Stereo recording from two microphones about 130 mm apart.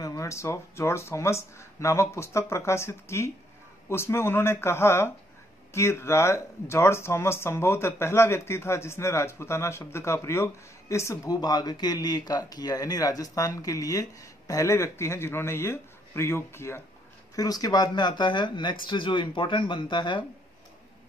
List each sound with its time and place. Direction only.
0.0 s speech: 25° left (ahead or behind)